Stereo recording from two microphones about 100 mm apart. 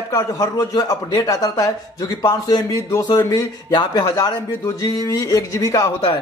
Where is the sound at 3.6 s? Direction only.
45° left (ahead or behind).